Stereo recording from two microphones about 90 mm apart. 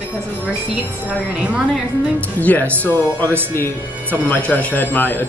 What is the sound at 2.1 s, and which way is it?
Speech, 15° left (ahead or behind).